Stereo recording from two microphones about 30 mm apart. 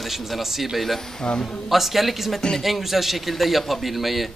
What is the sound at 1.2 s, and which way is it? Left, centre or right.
Speech, left.